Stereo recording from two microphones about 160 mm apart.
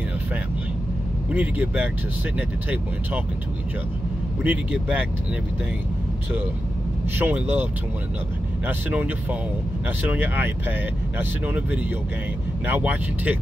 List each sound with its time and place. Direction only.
1.3 s speech: 10° right (ahead or behind)
4.4 s speech: 10° right (ahead or behind)
7.2 s speech: 15° right (ahead or behind)
8.6 s speech: 10° right (ahead or behind)